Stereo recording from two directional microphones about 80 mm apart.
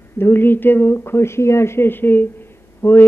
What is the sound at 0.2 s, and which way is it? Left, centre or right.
Speech, left.